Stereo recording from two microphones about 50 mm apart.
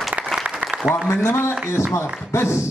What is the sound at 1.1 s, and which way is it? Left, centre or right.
A man's voice, left.